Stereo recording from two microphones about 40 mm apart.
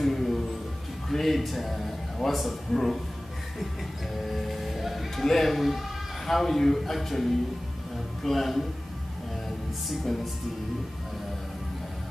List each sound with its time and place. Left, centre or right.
0.0 s music: centre
2.3 s a man's voice: centre
4.2 s music: centre
6.2 s a man's voice: centre
9.8 s a man's voice: centre